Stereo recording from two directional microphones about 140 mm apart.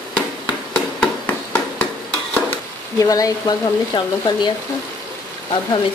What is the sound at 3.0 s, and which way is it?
Speech, 25° left (ahead or behind).